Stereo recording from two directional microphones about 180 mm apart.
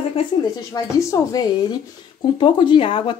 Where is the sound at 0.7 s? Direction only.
15° left (ahead or behind).